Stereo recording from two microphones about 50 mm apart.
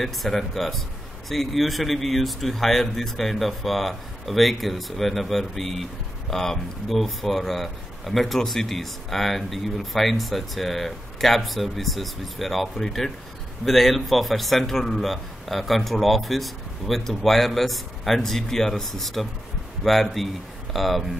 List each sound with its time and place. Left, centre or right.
0.0 s speech: centre